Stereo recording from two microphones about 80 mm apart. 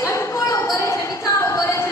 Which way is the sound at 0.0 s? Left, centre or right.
Left.